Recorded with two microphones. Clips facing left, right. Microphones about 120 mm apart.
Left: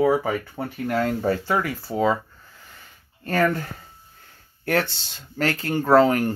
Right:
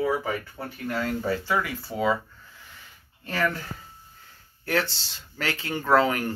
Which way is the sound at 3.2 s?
50° left (ahead or behind).